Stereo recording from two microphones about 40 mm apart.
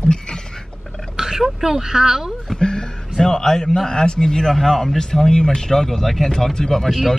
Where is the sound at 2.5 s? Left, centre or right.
Centre.